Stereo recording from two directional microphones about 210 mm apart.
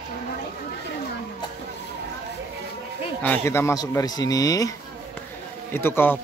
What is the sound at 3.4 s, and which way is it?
Speech, 15° left (ahead or behind).